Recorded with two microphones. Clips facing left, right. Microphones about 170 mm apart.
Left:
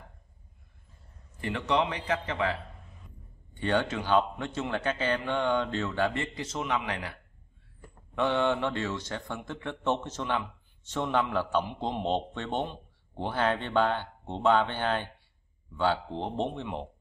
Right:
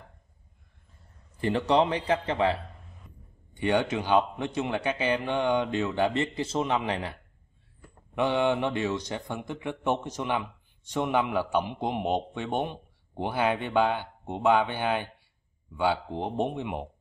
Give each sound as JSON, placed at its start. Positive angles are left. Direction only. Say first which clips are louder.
{"t": 1.4, "sound": "a man's voice", "louder": "right 5 dB", "side_deg": -30}
{"t": 3.5, "sound": "speech", "louder": "right 3 dB", "side_deg": -15}
{"t": 8.1, "sound": "speech", "louder": "right 2 dB", "side_deg": -15}